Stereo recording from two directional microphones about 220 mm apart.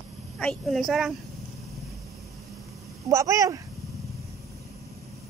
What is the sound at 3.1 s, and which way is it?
Speech, 15° right (ahead or behind).